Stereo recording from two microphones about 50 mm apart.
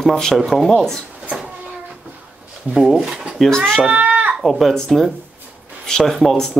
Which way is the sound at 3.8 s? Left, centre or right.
Right.